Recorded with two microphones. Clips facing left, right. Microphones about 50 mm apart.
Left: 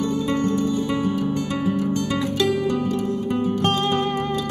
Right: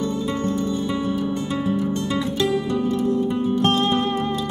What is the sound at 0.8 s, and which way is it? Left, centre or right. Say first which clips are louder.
Music: left 1 dB; left.